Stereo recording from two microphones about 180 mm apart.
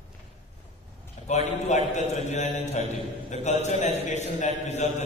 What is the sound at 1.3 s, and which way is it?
A man's voice, 40° left (ahead or behind).